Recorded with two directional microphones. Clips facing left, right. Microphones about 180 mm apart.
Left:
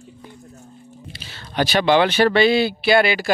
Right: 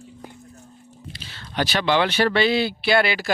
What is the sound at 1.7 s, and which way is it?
Speech, 15° left (ahead or behind).